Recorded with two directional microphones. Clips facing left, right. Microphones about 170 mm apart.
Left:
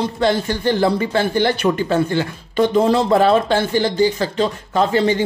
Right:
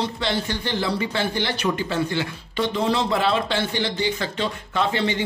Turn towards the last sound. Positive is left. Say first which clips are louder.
# left 7 dB
turn(degrees=40)  # may be behind; listen again after turning